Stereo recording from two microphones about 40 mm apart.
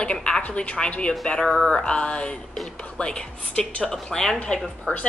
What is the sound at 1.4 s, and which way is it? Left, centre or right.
Speech, centre.